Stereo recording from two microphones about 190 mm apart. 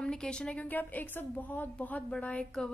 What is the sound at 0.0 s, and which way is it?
A woman's voice, 5° left (ahead or behind).